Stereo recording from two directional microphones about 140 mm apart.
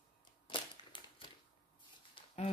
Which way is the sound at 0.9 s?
35° left (ahead or behind).